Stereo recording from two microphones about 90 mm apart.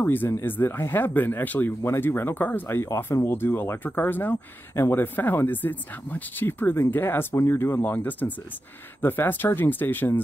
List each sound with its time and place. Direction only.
0.0 s speech: 25° left (ahead or behind)